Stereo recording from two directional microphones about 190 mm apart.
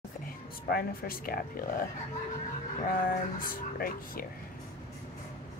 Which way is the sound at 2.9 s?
45° left (ahead or behind).